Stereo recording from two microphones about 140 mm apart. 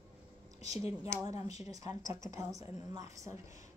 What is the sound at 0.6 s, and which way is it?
Speech, 50° left (ahead or behind).